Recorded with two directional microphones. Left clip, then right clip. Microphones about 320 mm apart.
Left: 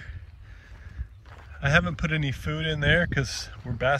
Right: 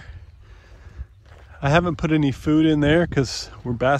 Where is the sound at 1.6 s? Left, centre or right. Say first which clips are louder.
Right 4 dB; centre.